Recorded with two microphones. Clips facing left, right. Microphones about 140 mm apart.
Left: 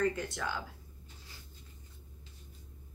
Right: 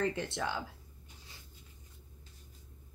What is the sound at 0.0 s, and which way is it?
Speech, 25° right (ahead or behind).